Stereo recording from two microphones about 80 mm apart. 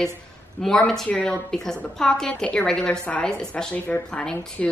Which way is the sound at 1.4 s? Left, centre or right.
Centre.